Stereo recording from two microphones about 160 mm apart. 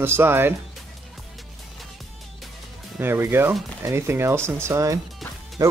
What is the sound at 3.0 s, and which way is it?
Speech, 15° right (ahead or behind).